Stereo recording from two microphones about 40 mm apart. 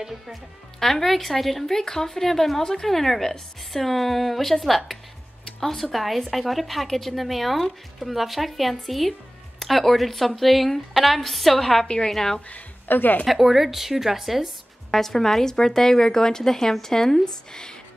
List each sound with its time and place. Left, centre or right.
0.3 s a woman's voice: centre
11.8 s a woman's voice: left
12.1 s speech: centre
12.8 s speech: left
13.3 s speech: centre
14.9 s speech: centre